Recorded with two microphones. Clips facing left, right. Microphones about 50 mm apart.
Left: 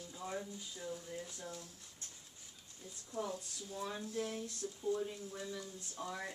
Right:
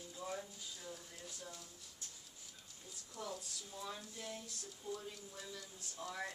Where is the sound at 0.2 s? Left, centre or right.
Centre.